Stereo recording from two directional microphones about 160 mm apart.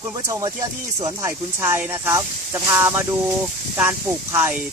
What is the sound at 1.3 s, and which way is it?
Speech, 15° right (ahead or behind).